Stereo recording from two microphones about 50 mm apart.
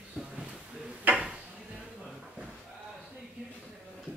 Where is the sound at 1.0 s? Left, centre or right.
Right.